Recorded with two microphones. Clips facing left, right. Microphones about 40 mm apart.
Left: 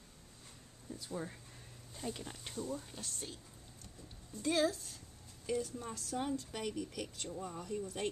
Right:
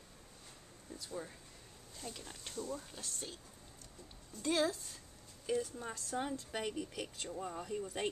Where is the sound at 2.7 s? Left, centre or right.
Centre.